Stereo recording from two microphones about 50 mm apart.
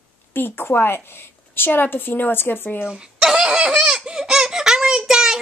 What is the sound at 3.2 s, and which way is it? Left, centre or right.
Baby laughter, centre.